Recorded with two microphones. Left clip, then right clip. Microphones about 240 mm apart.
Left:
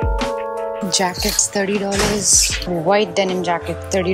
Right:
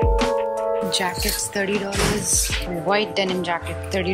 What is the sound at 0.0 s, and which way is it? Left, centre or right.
Music, centre.